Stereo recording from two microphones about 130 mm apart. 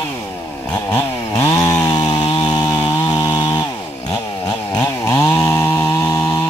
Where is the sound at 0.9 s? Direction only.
25° left (ahead or behind).